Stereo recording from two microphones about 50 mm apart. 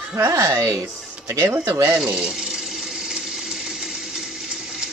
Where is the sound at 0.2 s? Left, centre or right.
Right.